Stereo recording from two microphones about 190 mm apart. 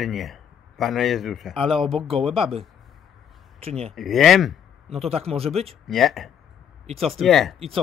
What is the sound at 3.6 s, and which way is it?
Speech, 30° right (ahead or behind).